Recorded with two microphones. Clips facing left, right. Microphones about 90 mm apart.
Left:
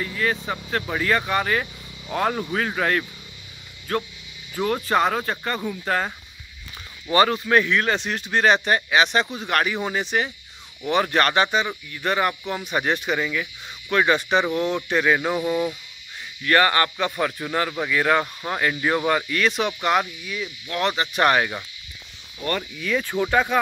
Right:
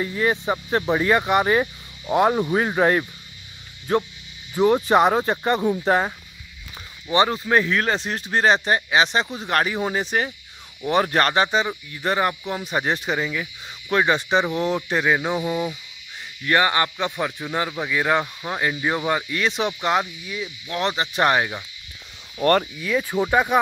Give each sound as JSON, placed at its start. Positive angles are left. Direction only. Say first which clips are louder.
{"t": 0.0, "sound": "speech", "louder": "right 3 dB", "side_deg": -25}
{"t": 7.1, "sound": "speech", "louder": "left 1 dB", "side_deg": -20}
{"t": 14.9, "sound": "music", "louder": "even", "side_deg": -20}
{"t": 16.4, "sound": "speech", "louder": "left 1 dB", "side_deg": -20}
{"t": 17.6, "sound": "music", "louder": "left 1 dB", "side_deg": -10}
{"t": 18.2, "sound": "speech", "louder": "left 1 dB", "side_deg": -5}
{"t": 18.6, "sound": "speech", "louder": "left 1 dB", "side_deg": -15}
{"t": 22.4, "sound": "speech", "louder": "right 8 dB", "side_deg": -55}
{"t": 22.8, "sound": "music", "louder": "right 1 dB", "side_deg": -5}